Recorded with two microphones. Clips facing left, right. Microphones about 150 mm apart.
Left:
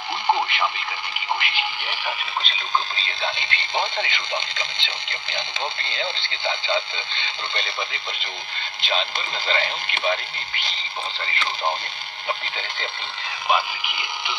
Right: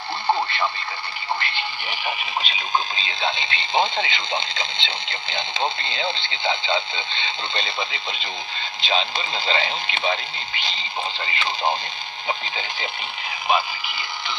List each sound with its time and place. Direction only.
0.3 s radio: 15° left (ahead or behind)
1.4 s speech: 15° left (ahead or behind)
1.9 s speech: 10° right (ahead or behind)
12.3 s speech: 15° right (ahead or behind)